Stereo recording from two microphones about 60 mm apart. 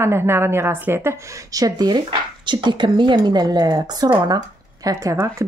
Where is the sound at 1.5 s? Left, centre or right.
Right.